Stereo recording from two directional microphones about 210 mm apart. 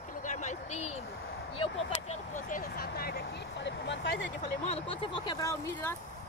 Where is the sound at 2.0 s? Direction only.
35° left (ahead or behind); by 4.3 s 60° left (ahead or behind).